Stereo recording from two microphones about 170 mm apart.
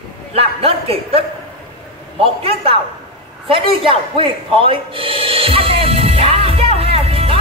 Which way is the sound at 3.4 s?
30° right (ahead or behind).